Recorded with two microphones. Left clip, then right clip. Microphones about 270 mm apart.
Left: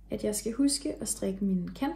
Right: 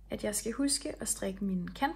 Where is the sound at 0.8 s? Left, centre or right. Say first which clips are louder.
Left 3 dB; centre.